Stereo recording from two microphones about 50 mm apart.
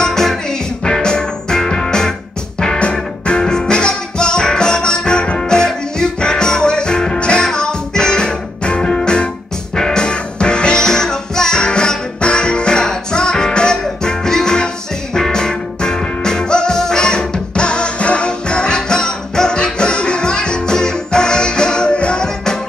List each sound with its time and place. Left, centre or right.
0.0 s music: centre